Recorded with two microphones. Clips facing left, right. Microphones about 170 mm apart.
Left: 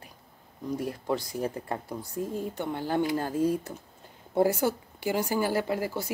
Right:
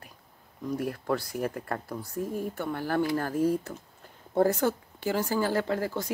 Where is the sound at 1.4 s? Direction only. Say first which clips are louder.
Even; 15° left (ahead or behind).